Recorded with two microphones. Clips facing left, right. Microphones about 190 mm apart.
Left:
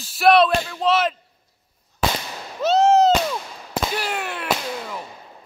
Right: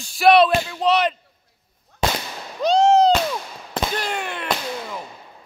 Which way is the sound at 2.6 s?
5° left (ahead or behind).